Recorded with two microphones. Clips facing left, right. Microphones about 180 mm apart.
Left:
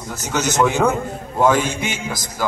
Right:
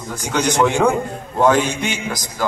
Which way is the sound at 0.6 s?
5° left (ahead or behind).